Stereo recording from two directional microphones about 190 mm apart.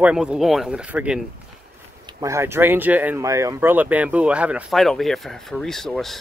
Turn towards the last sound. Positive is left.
turn(degrees=0)  # may be behind; listen again after turning